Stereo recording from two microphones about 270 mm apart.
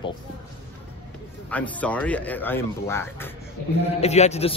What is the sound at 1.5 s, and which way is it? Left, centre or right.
Speech, centre.